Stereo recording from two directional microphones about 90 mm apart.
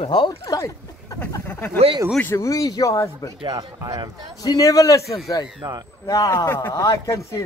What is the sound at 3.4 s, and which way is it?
Speech, 45° right (ahead or behind).